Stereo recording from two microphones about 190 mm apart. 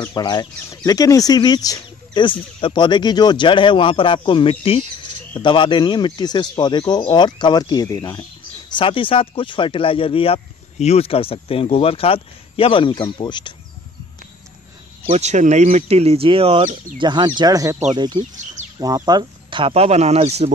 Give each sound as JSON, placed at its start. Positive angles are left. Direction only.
{"t": 0.1, "sound": "speech", "side_deg": 25}
{"t": 15.0, "sound": "speech", "side_deg": -35}